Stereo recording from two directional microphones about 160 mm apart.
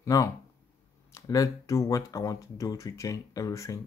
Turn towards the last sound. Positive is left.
turn(degrees=20)  # may be behind; listen again after turning